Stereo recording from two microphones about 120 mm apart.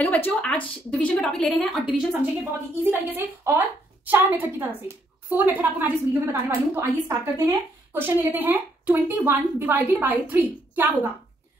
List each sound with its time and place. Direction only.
0.0 s a woman's voice: 15° left (ahead or behind)
2.8 s a woman's voice: 20° right (ahead or behind)